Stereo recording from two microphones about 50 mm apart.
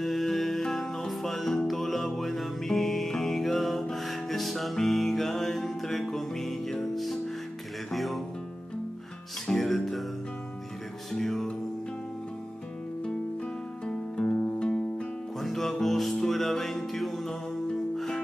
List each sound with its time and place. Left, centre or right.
0.0 s music: centre
9.5 s music: centre
11.1 s music: centre
13.8 s music: centre
15.4 s music: centre